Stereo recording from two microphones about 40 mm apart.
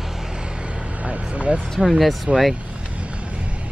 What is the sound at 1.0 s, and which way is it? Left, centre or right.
Vehicle, right.